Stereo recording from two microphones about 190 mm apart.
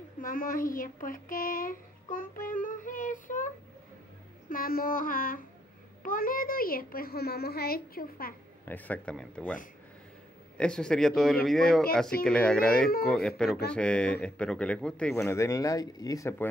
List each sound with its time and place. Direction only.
0.2 s a child's voice: 45° left (ahead or behind)
8.6 s speech: 10° left (ahead or behind)
10.6 s speech: 5° left (ahead or behind)